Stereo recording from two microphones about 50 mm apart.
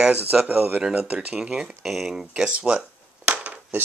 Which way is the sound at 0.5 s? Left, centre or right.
Right.